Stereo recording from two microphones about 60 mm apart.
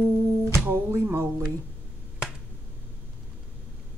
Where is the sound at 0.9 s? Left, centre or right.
Right.